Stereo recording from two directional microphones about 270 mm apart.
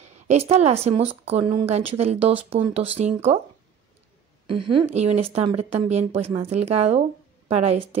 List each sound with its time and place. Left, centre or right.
0.0 s a woman's voice: right
4.5 s a woman's voice: centre